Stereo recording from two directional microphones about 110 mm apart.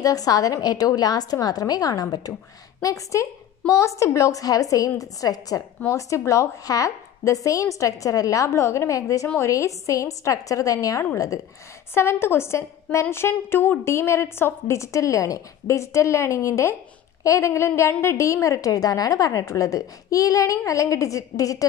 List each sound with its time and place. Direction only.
0.0 s a woman's voice: 35° left (ahead or behind)